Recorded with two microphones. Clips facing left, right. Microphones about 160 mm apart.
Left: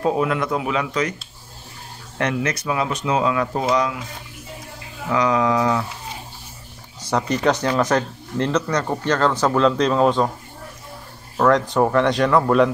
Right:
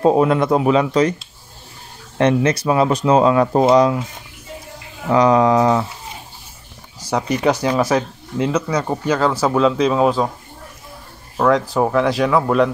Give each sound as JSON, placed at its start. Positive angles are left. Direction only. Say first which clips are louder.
{"t": 0.0, "sound": "speech", "louder": "right 6 dB", "side_deg": -35}
{"t": 2.1, "sound": "speech", "louder": "right 7 dB", "side_deg": -25}
{"t": 5.0, "sound": "speech", "louder": "right 6 dB", "side_deg": -35}
{"t": 7.1, "sound": "speech", "louder": "right 2 dB", "side_deg": -10}
{"t": 11.3, "sound": "speech", "louder": "right 1 dB", "side_deg": -5}